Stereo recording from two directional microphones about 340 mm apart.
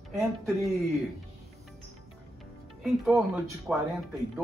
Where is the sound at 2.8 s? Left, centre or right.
Centre.